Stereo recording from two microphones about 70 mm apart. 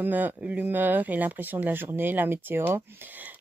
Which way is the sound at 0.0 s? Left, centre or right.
Right.